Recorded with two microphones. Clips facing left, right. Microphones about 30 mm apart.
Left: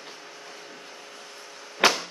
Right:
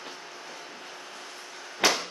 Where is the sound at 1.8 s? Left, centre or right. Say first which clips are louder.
Left 3 dB; left.